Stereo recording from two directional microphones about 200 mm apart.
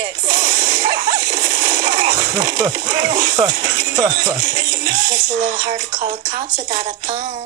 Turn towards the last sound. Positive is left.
turn(degrees=-45)  # may be behind; listen again after turning